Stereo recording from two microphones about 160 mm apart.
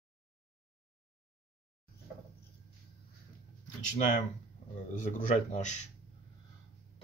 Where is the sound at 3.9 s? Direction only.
50° left (ahead or behind).